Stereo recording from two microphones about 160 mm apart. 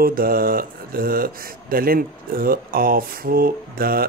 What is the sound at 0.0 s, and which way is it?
Speech, 65° right (ahead or behind).